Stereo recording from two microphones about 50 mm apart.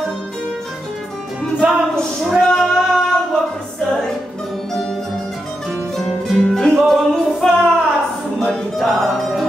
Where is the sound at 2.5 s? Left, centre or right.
Centre.